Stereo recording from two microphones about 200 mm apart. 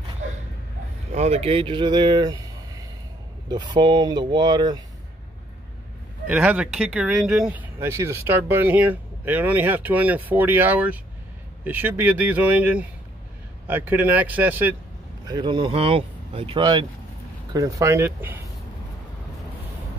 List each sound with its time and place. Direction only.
1.1 s speech: 35° right (ahead or behind)
6.2 s speech: 5° right (ahead or behind)
15.2 s speech: 20° right (ahead or behind)